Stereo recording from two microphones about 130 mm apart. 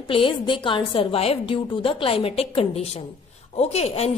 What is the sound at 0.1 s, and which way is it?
A woman's voice, 40° left (ahead or behind).